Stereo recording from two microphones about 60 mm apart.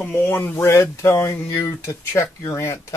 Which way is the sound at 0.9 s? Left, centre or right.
Left.